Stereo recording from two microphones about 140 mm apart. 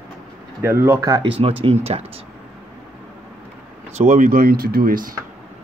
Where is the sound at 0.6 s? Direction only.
15° right (ahead or behind).